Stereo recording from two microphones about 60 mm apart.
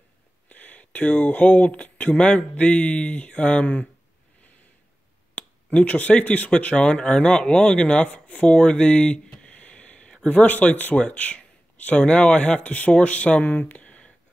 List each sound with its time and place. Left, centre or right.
0.5 s speech: left
5.3 s speech: left